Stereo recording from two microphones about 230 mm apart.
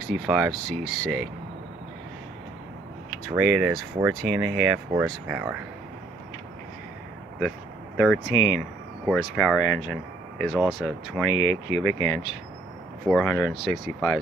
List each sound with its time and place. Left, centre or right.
0.1 s speech: centre
3.3 s speech: centre
8.3 s speech: centre
9.0 s speech: centre
11.3 s speech: centre
13.1 s speech: centre